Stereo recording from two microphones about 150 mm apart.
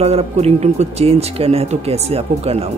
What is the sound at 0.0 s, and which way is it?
Speech, 45° right (ahead or behind).